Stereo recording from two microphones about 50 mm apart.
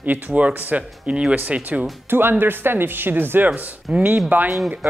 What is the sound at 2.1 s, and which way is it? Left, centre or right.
Speech, right.